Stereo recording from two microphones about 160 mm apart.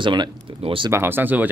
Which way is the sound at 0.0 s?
30° right (ahead or behind).